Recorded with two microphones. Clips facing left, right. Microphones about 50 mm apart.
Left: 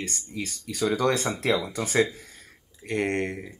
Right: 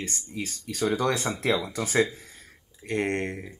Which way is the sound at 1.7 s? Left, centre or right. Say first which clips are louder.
Left 1 dB; left.